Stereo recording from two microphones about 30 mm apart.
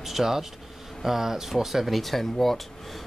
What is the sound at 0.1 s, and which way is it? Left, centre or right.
Speech, centre.